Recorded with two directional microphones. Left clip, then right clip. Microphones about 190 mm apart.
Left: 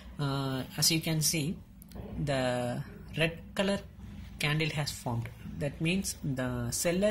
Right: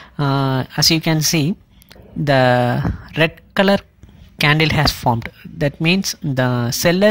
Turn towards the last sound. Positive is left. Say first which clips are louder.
# right 15 dB
turn(degrees=-45)  # may be behind; listen again after turning